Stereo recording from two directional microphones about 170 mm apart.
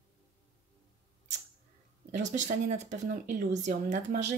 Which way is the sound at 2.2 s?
45° right (ahead or behind).